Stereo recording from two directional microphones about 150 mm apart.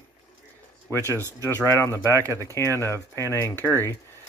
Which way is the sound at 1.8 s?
15° left (ahead or behind).